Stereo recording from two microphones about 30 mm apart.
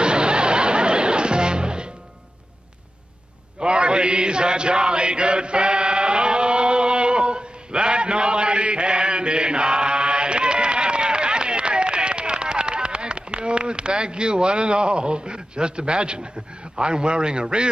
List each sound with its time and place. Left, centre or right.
0.0 s music: right
3.5 s chant: right
16.7 s a man's voice: right